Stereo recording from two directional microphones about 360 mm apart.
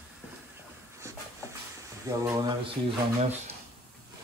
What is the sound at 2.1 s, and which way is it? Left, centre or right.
Speech, centre.